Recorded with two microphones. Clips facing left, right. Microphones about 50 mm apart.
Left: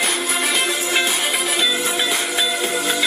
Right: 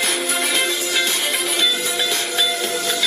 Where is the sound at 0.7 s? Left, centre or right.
Centre.